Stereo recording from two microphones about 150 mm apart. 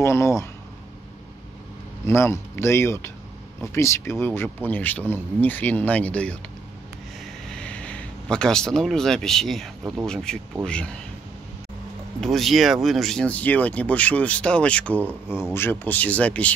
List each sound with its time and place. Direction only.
0.0 s speech: 20° left (ahead or behind)
2.0 s speech: 15° left (ahead or behind)
7.4 s speech: 5° left (ahead or behind)
12.2 s speech: centre (ahead or behind)
15.0 s speech: 10° right (ahead or behind)
15.5 s speech: 15° left (ahead or behind)